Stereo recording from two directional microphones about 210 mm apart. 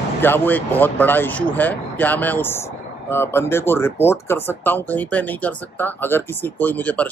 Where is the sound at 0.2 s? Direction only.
10° left (ahead or behind).